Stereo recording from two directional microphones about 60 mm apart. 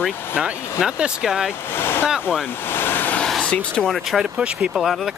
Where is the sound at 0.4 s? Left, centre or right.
Centre.